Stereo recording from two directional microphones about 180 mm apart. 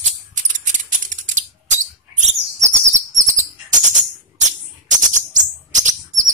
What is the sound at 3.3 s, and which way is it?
Bird, 45° right (ahead or behind).